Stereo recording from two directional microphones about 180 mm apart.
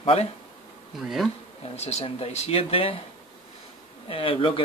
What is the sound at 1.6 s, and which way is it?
A man's voice, 35° left (ahead or behind).